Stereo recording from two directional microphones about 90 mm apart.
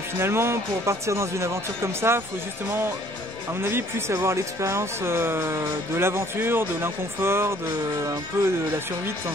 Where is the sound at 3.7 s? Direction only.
30° right (ahead or behind).